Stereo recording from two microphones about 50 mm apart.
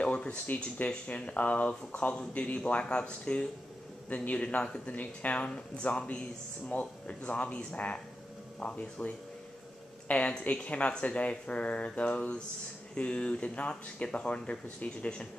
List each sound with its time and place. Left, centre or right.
0.0 s speech: left